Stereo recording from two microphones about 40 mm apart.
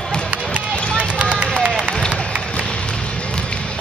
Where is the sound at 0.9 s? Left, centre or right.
Right.